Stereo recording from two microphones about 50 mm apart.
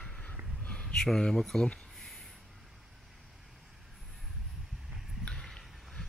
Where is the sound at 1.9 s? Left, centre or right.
Centre.